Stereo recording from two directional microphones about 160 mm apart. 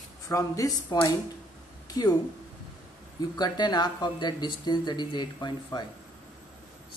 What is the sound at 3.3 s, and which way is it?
Speech, 25° left (ahead or behind).